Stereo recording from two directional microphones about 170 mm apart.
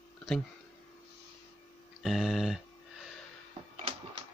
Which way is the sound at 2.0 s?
Centre (ahead or behind).